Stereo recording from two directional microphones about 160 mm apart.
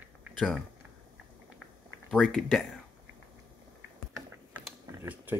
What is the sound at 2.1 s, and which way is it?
Speech, centre (ahead or behind).